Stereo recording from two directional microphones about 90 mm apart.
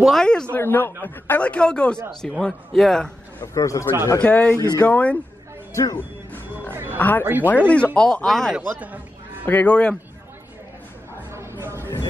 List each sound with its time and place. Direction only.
0.0 s speech: 5° left (ahead or behind)
0.6 s a man's voice: 25° left (ahead or behind); by 3.1 s 5° left (ahead or behind)
3.5 s a man's voice: 35° left (ahead or behind)
4.2 s speech: 15° left (ahead or behind)
5.7 s speech: 35° left (ahead or behind)
6.7 s a sound: 25° right (ahead or behind)
7.0 s speech: 20° left (ahead or behind)
8.5 s music: 15° right (ahead or behind)
9.5 s speech: 15° left (ahead or behind)
11.3 s a sound: 30° right (ahead or behind)